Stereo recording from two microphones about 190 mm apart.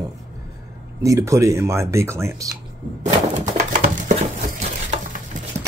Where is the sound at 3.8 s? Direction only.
35° right (ahead or behind).